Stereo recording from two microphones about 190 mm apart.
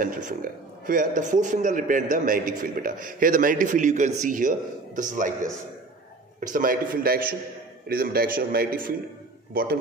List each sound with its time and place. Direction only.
0.0 s a man's voice: 45° right (ahead or behind)